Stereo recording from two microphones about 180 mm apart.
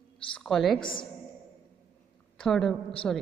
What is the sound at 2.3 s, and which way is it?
Speech, 5° left (ahead or behind).